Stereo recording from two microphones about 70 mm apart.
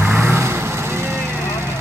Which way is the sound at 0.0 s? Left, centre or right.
Right.